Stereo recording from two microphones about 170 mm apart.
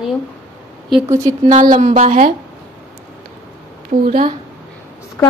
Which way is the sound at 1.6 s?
45° right (ahead or behind).